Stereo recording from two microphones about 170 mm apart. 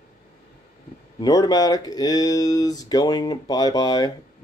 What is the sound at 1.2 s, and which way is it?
Speech, 20° left (ahead or behind).